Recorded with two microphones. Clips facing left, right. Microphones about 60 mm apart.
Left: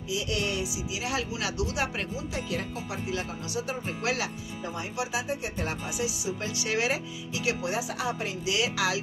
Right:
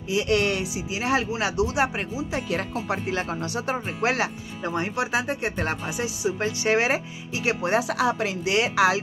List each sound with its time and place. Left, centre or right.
0.1 s speech: right
0.9 s speech: right
2.5 s speech: right
4.6 s speech: right
7.9 s speech: right
8.5 s speech: right